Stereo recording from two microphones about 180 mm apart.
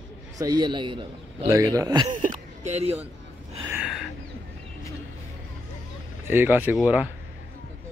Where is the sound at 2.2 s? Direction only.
40° right (ahead or behind).